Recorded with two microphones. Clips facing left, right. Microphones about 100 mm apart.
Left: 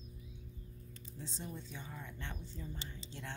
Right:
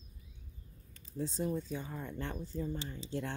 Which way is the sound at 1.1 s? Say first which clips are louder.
Right 12 dB; 45° right (ahead or behind).